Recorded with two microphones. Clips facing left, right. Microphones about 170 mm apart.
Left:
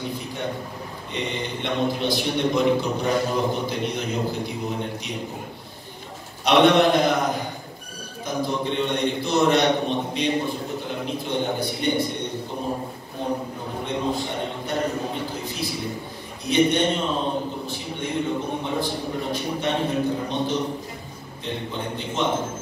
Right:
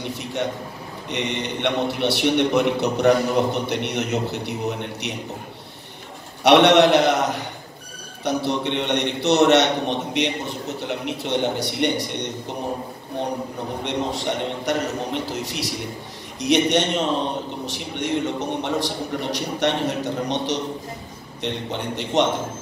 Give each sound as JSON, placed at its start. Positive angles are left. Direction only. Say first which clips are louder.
{"t": 0.1, "sound": "a man's voice", "louder": "right 3 dB", "side_deg": -80}
{"t": 6.4, "sound": "a man's voice", "louder": "right 3 dB", "side_deg": -75}
{"t": 13.8, "sound": "a man's voice", "louder": "right 1 dB", "side_deg": -80}